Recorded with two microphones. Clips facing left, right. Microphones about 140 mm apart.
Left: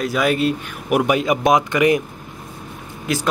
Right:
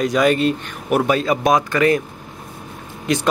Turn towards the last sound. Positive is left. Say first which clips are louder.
# right 3 dB
turn(degrees=5)  # may be behind; listen again after turning